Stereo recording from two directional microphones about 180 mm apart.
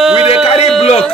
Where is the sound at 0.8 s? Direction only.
35° left (ahead or behind).